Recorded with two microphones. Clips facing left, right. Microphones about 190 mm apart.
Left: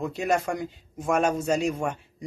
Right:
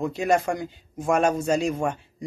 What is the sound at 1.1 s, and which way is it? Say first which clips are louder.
Speech: right 2 dB; 5° left (ahead or behind).